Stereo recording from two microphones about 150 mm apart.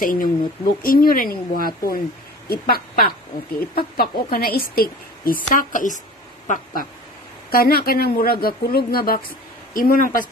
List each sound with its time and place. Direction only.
0.0 s a woman's voice: 70° left (ahead or behind)
6.4 s a sound: 65° left (ahead or behind)
7.5 s speech: 85° left
9.8 s a woman's voice: 70° left (ahead or behind)